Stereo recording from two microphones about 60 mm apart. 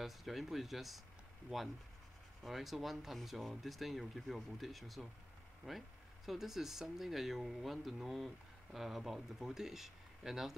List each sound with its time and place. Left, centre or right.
0.0 s speech: centre
2.4 s speech: centre